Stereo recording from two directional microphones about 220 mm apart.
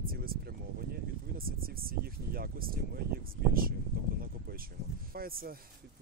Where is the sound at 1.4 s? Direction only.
40° right (ahead or behind).